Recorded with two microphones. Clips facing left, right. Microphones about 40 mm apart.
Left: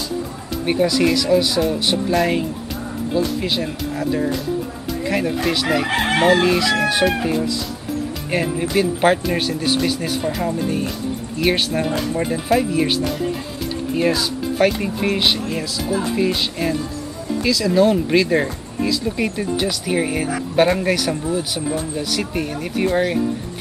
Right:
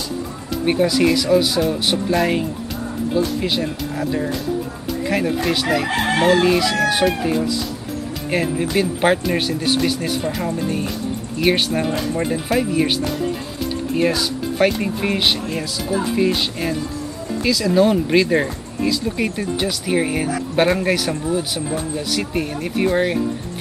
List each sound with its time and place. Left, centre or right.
0.7 s speech: centre
5.9 s chicken: centre
6.4 s speech: centre
8.3 s speech: centre